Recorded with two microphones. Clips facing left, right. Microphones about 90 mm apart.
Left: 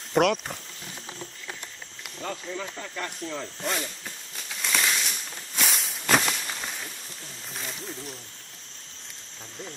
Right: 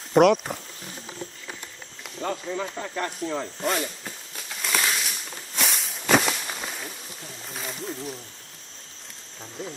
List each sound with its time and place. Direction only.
0.1 s speech: 5° right (ahead or behind)
2.2 s speech: 35° right (ahead or behind)
3.6 s a sound: 5° right (ahead or behind)